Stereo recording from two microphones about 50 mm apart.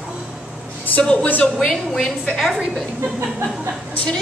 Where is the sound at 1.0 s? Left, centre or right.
Centre.